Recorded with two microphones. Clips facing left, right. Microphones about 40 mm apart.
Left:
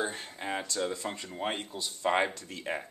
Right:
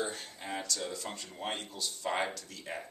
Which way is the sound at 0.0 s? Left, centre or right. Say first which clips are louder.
Left 3 dB; left.